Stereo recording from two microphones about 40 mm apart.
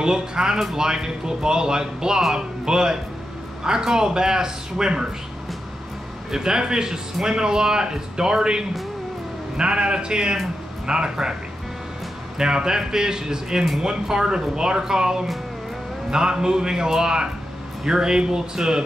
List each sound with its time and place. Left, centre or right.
0.0 s a man's voice: centre
6.3 s a man's voice: centre
12.4 s speech: centre